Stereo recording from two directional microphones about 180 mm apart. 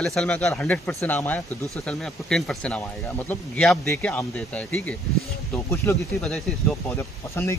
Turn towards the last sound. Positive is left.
turn(degrees=15)  # may be behind; listen again after turning